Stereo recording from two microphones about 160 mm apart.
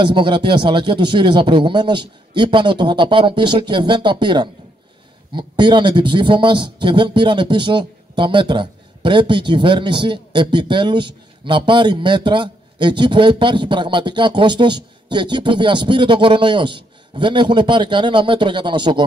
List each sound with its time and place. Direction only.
0.0 s speech: 30° right (ahead or behind)